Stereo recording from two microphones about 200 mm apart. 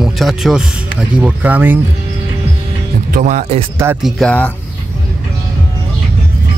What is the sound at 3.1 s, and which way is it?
Speech, 40° right (ahead or behind).